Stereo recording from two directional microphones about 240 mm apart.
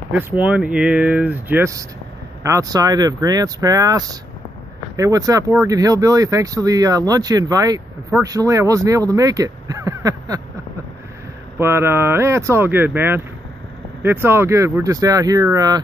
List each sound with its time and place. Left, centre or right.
0.1 s speech: centre
11.5 s speech: centre